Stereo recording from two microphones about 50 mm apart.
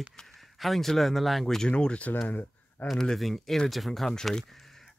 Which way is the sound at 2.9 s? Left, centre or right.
Centre.